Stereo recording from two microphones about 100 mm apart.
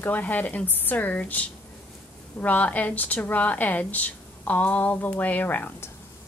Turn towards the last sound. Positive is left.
turn(degrees=20)  # may be behind; listen again after turning